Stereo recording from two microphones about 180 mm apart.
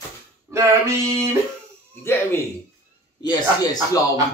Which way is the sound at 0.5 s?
15° right (ahead or behind).